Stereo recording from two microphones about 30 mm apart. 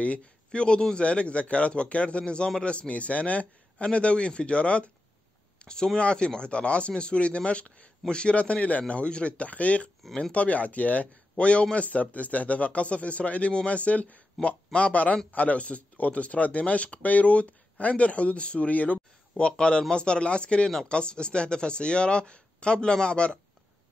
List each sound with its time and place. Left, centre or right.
0.5 s speech: left
1.0 s speech: left
3.7 s speech: left
5.6 s a sound: left
5.9 s speech: left
8.4 s speech: left
9.5 s speech: left
18.7 s speech: left
19.5 s speech: left